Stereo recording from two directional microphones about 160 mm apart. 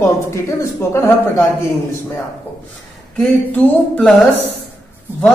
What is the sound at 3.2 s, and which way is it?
Speech, 5° left (ahead or behind).